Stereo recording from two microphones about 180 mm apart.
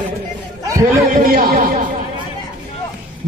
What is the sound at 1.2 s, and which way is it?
Speech, 55° right (ahead or behind).